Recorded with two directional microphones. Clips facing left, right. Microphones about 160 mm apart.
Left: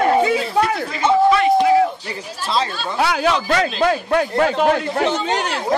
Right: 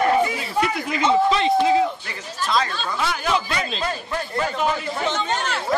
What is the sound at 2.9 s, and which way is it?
Speech, 70° left (ahead or behind).